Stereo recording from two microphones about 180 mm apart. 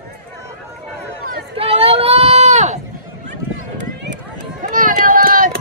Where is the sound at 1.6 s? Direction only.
30° right (ahead or behind).